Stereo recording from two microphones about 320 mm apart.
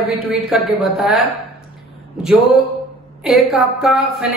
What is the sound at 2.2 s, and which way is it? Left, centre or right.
Speech, centre.